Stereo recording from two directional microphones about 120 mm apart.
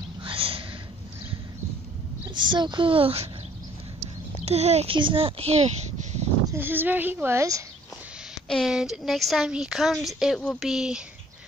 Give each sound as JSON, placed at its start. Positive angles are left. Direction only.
{"t": 0.2, "sound": "a sound", "side_deg": -50}
{"t": 2.3, "sound": "speech", "side_deg": -40}
{"t": 4.5, "sound": "a child's voice", "side_deg": -65}
{"t": 4.9, "sound": "speech", "side_deg": -45}
{"t": 6.4, "sound": "speech", "side_deg": -20}
{"t": 8.5, "sound": "speech", "side_deg": 0}